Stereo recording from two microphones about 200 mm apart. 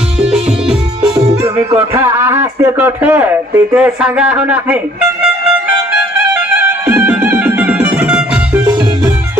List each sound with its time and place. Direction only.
0.2 s music: 5° right (ahead or behind)
1.6 s music: 30° right (ahead or behind)
2.0 s a man's voice: 10° right (ahead or behind)
6.3 s music: 10° right (ahead or behind)